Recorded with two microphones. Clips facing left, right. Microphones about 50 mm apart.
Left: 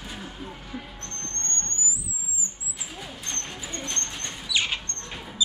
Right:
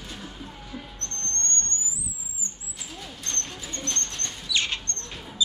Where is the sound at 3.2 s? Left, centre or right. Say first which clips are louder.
Right 1 dB; centre.